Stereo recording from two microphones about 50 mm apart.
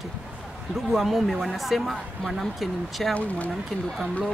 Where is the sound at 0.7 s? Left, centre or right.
Centre.